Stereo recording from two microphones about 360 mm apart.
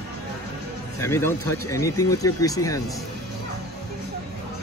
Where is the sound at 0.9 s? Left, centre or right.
Centre.